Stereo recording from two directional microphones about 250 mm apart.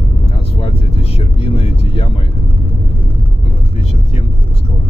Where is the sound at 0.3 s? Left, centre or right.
Left.